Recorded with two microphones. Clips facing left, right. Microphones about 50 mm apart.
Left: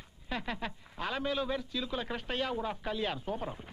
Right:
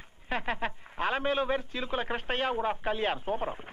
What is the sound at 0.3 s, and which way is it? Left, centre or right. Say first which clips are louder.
A man's voice: right 5 dB; right.